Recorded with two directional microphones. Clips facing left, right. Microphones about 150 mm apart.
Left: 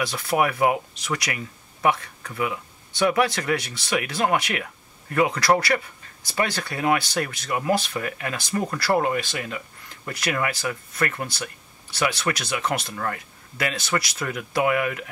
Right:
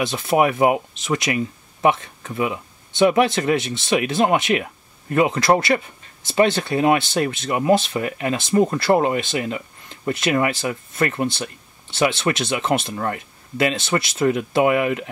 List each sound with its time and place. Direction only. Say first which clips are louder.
0.0 s speech: right 5 dB; 25° right (ahead or behind)